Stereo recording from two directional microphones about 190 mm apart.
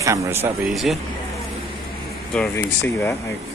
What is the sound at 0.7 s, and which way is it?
Speech, centre (ahead or behind).